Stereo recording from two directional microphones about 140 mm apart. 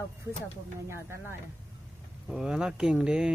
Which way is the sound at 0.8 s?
20° right (ahead or behind).